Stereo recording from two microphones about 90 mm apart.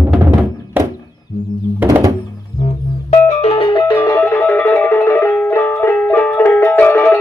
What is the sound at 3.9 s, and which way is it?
Music, 40° left (ahead or behind).